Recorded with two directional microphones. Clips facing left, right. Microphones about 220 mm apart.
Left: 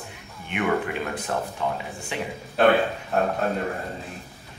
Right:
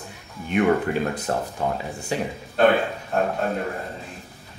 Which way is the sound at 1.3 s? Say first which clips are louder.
Right 2 dB; 40° right (ahead or behind).